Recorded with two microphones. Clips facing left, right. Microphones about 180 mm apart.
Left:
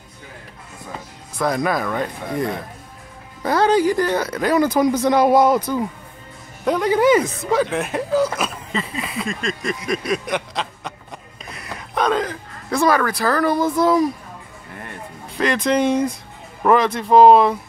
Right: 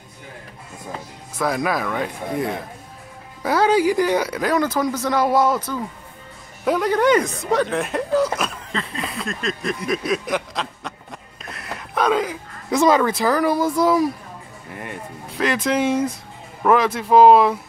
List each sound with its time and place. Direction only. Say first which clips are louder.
1.4 s speech: left 1 dB; 5° right (ahead or behind)
4.5 s speech: left 6 dB; 10° left (ahead or behind)
6.6 s speech: left 1 dB; centre (ahead or behind)
9.8 s chuckle: even; centre (ahead or behind)
12.7 s speech: right 2 dB; 20° right (ahead or behind)
15.3 s speech: left 2 dB; 5° right (ahead or behind)